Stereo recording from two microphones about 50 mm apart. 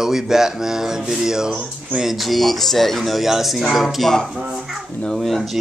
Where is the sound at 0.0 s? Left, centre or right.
Centre.